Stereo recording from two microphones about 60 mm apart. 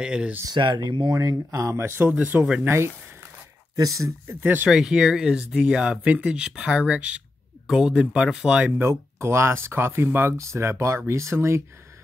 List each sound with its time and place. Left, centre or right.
0.0 s speech: centre
0.5 s speech: right
3.7 s speech: right
4.4 s speech: right
4.6 s speech: centre
8.7 s speech: right
10.3 s speech: right